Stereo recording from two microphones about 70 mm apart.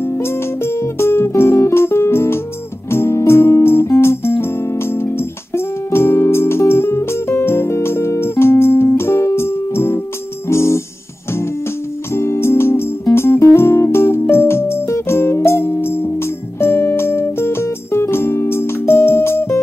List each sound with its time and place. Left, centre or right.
0.2 s music: left
12.1 s music: left